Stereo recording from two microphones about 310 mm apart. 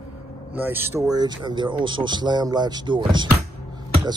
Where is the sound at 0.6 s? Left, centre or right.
Centre.